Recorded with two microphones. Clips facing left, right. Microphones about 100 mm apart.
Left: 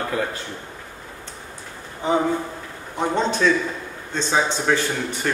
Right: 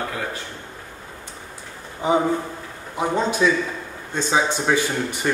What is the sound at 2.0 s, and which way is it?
Speech, 15° right (ahead or behind).